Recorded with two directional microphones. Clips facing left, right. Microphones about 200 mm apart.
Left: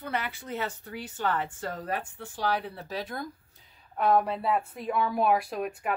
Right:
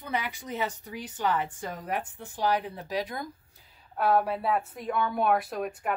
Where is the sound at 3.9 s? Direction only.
5° right (ahead or behind).